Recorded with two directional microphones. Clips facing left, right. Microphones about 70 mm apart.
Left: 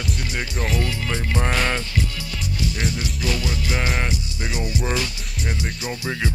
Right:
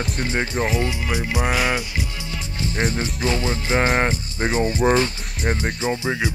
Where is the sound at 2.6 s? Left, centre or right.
Right.